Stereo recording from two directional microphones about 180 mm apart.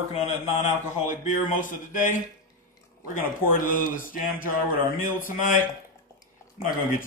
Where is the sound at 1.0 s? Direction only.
45° left (ahead or behind).